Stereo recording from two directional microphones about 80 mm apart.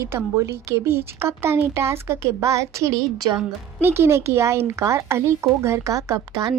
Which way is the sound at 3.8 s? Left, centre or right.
Right.